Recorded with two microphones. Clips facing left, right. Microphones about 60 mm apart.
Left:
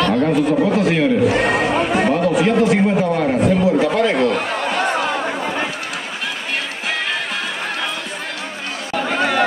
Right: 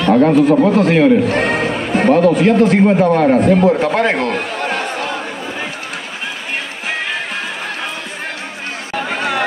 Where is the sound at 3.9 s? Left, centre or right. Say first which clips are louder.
Right 1 dB; right.